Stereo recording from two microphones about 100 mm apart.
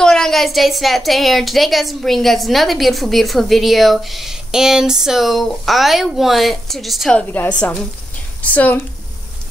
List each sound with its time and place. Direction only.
0.0 s speech: 5° left (ahead or behind)
7.2 s a woman's voice: 15° left (ahead or behind)